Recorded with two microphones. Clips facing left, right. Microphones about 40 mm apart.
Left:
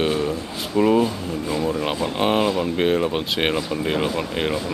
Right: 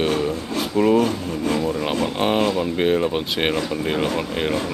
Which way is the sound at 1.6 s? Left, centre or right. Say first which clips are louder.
Right 1 dB; centre.